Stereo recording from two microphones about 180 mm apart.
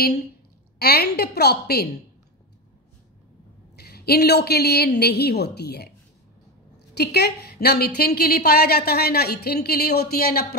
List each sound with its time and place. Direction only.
0.7 s a woman's voice: 60° left (ahead or behind)
3.7 s a woman's voice: 60° left (ahead or behind)
6.9 s a woman's voice: 65° left (ahead or behind)